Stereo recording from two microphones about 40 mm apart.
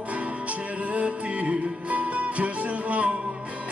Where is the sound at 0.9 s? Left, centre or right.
Right.